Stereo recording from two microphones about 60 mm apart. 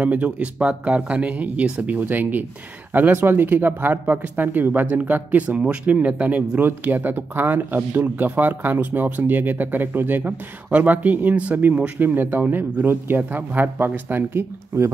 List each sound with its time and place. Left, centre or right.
0.0 s speech: right
6.6 s speech: right